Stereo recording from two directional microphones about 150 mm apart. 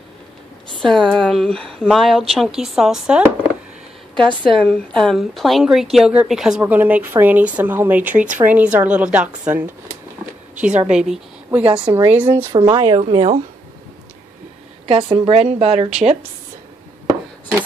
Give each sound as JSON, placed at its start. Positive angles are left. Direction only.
{"t": 0.8, "sound": "a woman's voice", "side_deg": 5}
{"t": 4.4, "sound": "a woman's voice", "side_deg": 5}
{"t": 10.9, "sound": "a woman's voice", "side_deg": -5}
{"t": 12.7, "sound": "speech", "side_deg": -35}
{"t": 14.9, "sound": "speech", "side_deg": -35}